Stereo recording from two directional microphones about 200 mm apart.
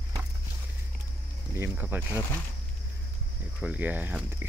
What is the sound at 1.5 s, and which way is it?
Speech, 10° right (ahead or behind).